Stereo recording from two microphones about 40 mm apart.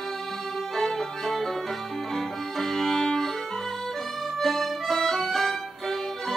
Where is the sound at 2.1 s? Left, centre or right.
Centre.